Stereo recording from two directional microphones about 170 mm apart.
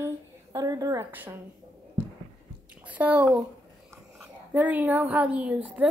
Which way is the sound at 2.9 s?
10° right (ahead or behind).